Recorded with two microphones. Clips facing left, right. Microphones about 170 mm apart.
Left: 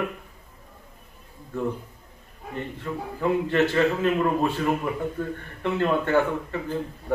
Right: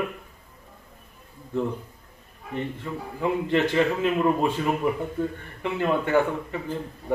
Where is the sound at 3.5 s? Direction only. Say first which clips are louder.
Right 1 dB; 15° right (ahead or behind).